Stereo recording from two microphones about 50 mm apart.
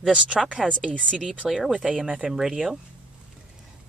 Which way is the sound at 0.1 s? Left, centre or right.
Right.